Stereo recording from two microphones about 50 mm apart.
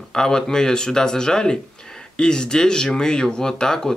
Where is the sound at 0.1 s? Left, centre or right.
Centre.